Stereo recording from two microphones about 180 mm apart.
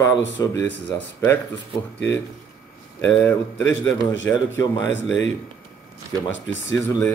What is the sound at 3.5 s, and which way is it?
Speech, 90° left.